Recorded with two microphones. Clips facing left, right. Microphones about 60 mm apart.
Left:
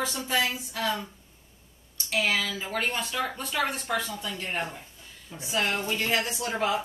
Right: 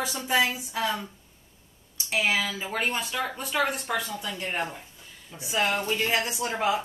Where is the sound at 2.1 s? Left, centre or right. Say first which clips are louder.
Right 1 dB; centre.